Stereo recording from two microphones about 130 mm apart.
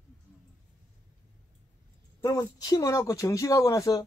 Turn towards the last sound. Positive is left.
turn(degrees=25)  # may be behind; listen again after turning